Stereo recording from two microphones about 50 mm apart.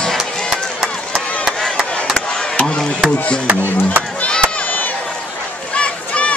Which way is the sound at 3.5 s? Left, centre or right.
Right.